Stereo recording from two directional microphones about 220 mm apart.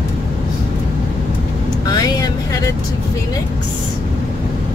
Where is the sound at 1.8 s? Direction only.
20° left (ahead or behind).